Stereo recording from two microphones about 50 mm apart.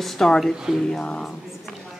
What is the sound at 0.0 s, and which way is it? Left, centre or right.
A woman's voice, centre.